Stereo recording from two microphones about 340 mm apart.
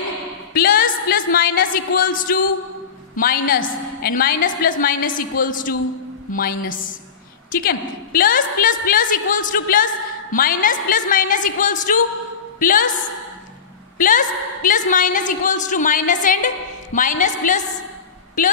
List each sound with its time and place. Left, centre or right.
0.5 s a sound: left
3.2 s a woman's voice: left
13.9 s a woman's voice: left